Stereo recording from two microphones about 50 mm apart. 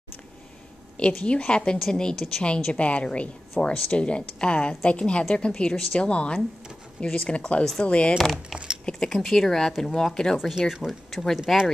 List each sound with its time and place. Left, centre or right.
1.2 s speech: left; by 2.4 s centre
2.4 s speech: left
5.5 s speech: centre
8.2 s speech: centre
8.8 s speech: centre
10.3 s speech: centre
11.1 s speech: centre